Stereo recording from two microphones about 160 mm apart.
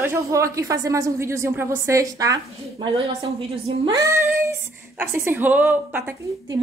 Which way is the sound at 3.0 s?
35° right (ahead or behind).